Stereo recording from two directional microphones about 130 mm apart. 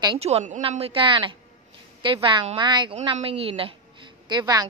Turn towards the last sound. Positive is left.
turn(degrees=-30)  # may be behind; listen again after turning